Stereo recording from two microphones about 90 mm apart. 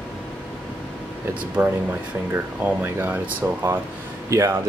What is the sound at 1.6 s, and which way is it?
Speech, 25° right (ahead or behind).